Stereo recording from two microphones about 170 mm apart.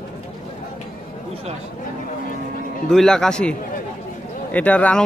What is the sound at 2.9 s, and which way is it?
A man's voice, 5° left (ahead or behind).